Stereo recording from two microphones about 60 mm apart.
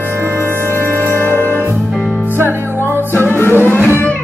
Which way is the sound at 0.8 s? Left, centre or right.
Left.